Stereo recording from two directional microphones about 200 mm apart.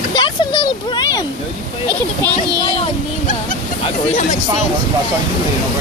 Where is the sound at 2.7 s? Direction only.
30° left (ahead or behind).